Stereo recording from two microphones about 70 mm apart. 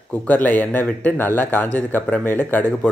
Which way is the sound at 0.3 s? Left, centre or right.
Left.